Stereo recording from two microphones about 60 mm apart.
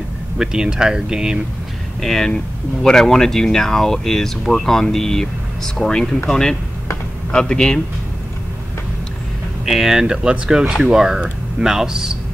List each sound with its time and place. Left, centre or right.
0.4 s speech: centre
2.0 s speech: centre
9.7 s speech: centre